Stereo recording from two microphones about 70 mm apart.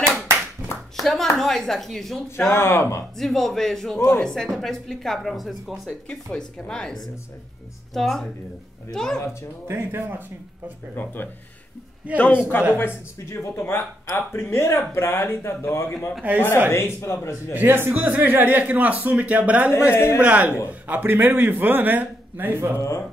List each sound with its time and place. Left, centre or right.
0.6 s clapping: right
0.9 s clapping: centre
1.3 s a woman's voice: centre
2.2 s speech: left
3.2 s a woman's voice: centre
6.0 s a woman's voice: centre
9.7 s speech: right
12.2 s a man's voice: left
16.2 s a man's voice: right
16.7 s speech: left
17.6 s a man's voice: right
19.9 s speech: left
20.2 s a man's voice: centre
22.8 s speech: left